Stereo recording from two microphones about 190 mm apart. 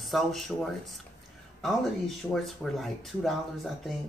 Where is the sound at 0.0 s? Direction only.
Centre (ahead or behind).